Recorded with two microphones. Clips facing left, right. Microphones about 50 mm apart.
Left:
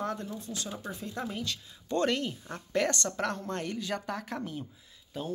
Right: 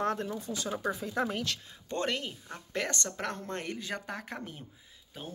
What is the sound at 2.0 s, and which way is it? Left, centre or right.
Speech, centre.